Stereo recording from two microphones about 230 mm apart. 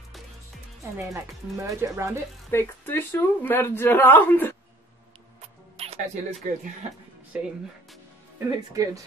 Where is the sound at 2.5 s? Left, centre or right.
Centre.